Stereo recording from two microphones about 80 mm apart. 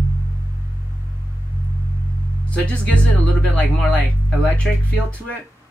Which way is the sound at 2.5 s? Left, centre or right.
Centre.